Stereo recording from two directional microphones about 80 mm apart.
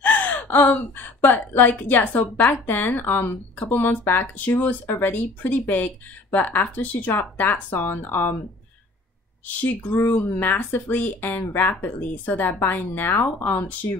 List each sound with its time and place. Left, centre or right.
0.0 s speech: left
9.6 s speech: left